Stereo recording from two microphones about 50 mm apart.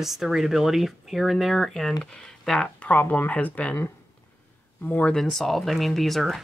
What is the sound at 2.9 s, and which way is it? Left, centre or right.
Speech, left.